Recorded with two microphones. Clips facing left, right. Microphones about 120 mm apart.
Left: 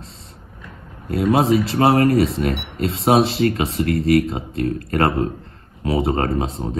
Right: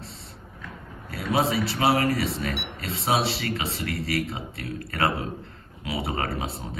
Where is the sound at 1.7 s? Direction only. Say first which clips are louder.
Left 7 dB; 50° left (ahead or behind).